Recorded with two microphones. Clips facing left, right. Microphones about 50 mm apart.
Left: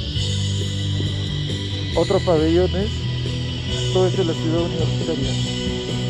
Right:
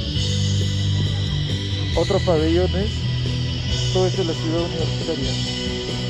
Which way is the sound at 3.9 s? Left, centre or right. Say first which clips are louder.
Left 2 dB; centre.